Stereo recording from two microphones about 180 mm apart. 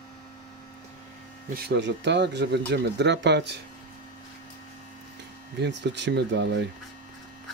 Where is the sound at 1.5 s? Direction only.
70° right (ahead or behind).